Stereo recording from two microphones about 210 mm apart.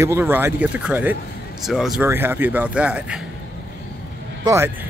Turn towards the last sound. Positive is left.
turn(degrees=-15)  # may be behind; listen again after turning